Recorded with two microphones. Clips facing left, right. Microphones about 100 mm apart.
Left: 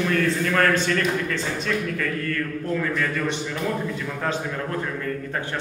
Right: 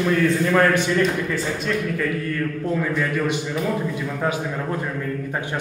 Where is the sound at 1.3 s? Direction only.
5° right (ahead or behind).